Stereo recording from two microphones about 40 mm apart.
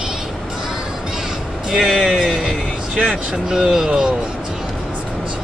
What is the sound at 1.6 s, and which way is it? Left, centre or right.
Speech, centre.